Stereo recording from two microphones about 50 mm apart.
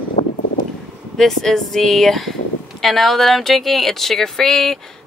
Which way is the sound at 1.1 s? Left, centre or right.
Centre.